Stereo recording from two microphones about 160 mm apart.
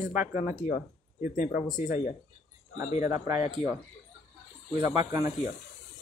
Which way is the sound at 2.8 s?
20° right (ahead or behind).